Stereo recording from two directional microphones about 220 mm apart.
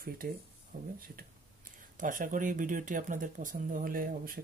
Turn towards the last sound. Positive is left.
turn(degrees=-40)  # may be behind; listen again after turning